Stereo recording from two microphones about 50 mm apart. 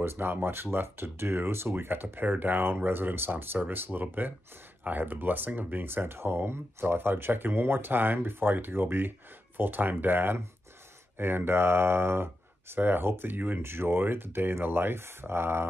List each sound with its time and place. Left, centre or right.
0.0 s speech: right
13.6 s speech: right